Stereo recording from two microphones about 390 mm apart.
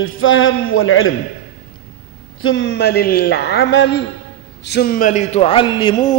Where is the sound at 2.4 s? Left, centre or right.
Left.